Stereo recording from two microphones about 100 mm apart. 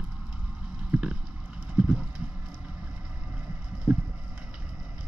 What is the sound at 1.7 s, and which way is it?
Clip-clop, 10° right (ahead or behind).